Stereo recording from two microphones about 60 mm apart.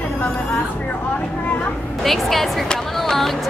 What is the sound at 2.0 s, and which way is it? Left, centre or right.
A woman's voice, centre.